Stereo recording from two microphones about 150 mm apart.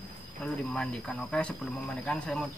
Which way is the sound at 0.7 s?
5° left (ahead or behind).